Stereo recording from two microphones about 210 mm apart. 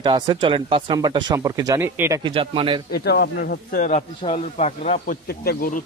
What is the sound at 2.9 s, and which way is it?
Speech, 50° left (ahead or behind).